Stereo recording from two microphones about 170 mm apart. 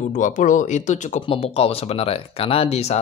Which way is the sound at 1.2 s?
35° left (ahead or behind).